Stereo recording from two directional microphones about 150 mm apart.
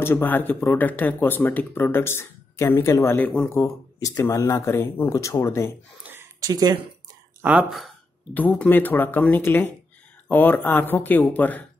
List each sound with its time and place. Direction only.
0.0 s speech: 15° left (ahead or behind)
6.4 s speech: 25° right (ahead or behind)
7.4 s speech: 5° right (ahead or behind)
8.4 s speech: 10° left (ahead or behind)